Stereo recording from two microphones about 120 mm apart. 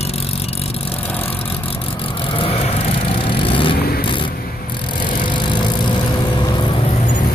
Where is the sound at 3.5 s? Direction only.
45° left (ahead or behind).